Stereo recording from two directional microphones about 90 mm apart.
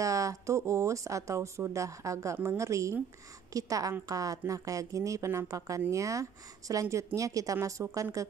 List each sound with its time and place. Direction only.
0.0 s speech: 40° right (ahead or behind)